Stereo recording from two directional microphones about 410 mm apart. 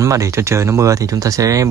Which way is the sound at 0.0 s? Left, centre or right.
Centre.